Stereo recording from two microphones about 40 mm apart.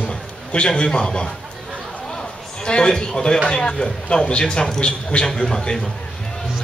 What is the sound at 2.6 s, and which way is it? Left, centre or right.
A man's voice, left.